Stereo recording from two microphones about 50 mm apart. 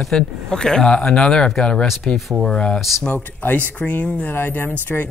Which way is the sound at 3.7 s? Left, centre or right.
Left.